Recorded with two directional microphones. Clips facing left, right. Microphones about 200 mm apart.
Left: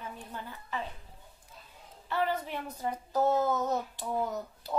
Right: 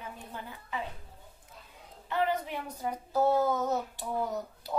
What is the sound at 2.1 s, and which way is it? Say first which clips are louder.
A woman's voice: right 1 dB; 15° right (ahead or behind).